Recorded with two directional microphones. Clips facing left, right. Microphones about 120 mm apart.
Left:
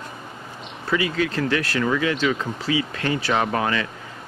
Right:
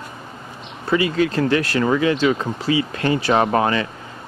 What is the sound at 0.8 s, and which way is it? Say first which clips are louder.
Speech: right 4 dB; 35° right (ahead or behind).